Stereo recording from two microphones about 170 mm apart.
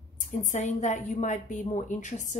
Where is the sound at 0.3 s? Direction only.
45° left (ahead or behind).